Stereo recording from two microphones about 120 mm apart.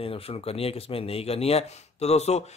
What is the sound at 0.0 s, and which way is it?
A man's voice, 55° left (ahead or behind).